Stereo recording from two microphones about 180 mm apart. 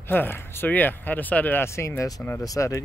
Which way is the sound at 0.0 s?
10° left (ahead or behind).